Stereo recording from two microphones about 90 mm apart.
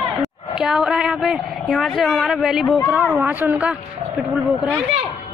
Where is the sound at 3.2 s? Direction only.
20° right (ahead or behind).